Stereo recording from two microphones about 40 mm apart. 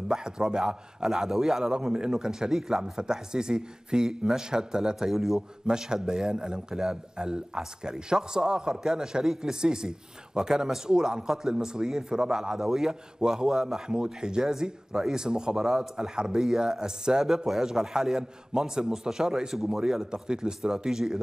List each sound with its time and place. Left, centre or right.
0.1 s a man's voice: centre
5.1 s a man's voice: centre
5.7 s a man's voice: centre
20.1 s a man's voice: centre